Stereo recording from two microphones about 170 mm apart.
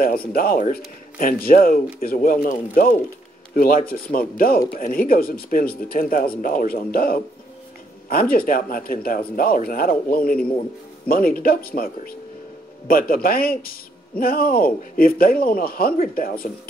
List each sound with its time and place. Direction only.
0.0 s speech: 60° left (ahead or behind)